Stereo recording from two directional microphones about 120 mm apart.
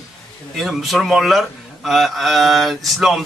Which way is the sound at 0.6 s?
Centre (ahead or behind).